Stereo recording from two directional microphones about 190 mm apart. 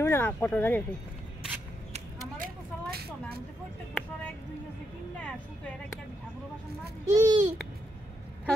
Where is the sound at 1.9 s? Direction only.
50° right (ahead or behind).